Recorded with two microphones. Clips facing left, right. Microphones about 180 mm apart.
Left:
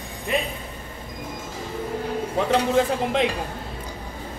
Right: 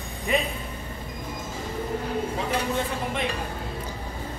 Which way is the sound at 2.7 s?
90° left.